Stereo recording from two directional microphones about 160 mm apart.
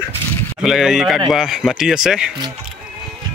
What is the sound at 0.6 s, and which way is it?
Speech, 5° right (ahead or behind).